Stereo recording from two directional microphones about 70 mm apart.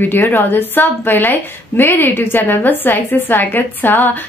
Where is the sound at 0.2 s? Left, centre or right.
Left.